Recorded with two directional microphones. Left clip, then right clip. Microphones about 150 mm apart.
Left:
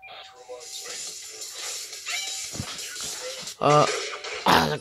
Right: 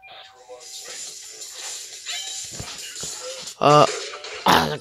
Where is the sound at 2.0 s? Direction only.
20° right (ahead or behind).